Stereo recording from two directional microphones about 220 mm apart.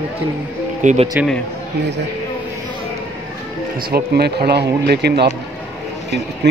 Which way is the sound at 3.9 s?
45° right (ahead or behind).